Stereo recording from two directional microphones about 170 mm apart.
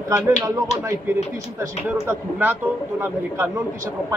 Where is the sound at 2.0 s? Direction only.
10° right (ahead or behind).